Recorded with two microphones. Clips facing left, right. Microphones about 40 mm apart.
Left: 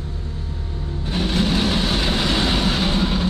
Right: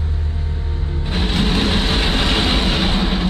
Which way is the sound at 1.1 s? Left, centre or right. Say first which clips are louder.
Right 1 dB; right.